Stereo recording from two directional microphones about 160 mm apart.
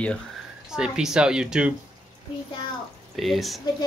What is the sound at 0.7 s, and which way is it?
Speech, 5° right (ahead or behind).